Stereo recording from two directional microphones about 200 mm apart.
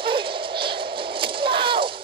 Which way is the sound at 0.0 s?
25° right (ahead or behind).